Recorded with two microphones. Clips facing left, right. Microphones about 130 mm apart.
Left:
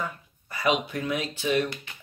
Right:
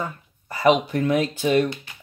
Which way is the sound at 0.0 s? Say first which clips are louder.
Right 3 dB; 40° right (ahead or behind).